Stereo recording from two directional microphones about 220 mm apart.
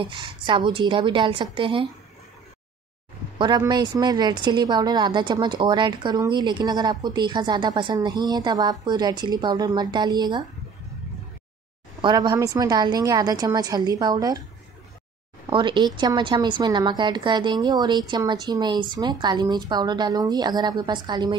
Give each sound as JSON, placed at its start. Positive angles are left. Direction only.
{"t": 0.0, "sound": "a woman's voice", "side_deg": -20}
{"t": 3.3, "sound": "a woman's voice", "side_deg": -20}
{"t": 12.0, "sound": "a woman's voice", "side_deg": -20}
{"t": 15.5, "sound": "a woman's voice", "side_deg": -20}